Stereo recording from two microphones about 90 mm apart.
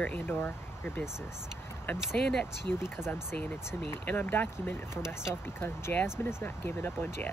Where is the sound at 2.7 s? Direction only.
25° left (ahead or behind).